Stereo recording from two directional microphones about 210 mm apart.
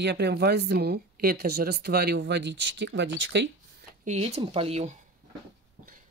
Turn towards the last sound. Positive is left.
turn(degrees=-30)  # may be behind; listen again after turning